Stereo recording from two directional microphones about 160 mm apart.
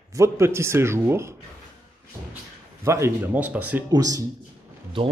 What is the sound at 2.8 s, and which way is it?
A man's voice, 15° right (ahead or behind).